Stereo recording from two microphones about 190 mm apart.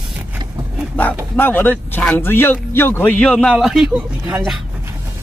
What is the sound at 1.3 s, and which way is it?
Speech, 10° left (ahead or behind).